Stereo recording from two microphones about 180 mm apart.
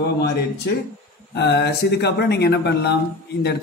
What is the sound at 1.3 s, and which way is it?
A man's voice, 70° left (ahead or behind).